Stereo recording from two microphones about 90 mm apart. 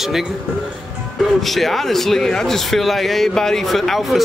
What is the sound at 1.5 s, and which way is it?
A man's voice, centre (ahead or behind).